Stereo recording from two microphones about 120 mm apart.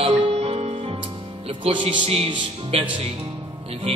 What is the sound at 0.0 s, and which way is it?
Music, 55° right (ahead or behind).